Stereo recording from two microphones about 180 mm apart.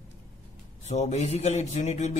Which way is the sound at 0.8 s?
40° left (ahead or behind).